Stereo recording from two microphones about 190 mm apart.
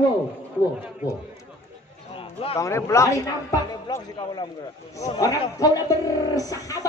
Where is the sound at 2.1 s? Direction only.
30° left (ahead or behind).